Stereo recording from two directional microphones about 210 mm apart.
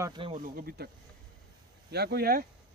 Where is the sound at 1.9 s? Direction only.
50° right (ahead or behind).